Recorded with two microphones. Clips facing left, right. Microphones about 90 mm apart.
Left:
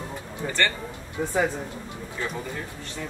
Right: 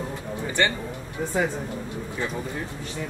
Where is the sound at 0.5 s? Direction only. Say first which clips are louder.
Right 2 dB; 15° right (ahead or behind).